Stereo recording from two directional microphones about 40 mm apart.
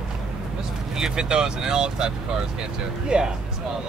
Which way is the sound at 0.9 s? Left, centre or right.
Centre.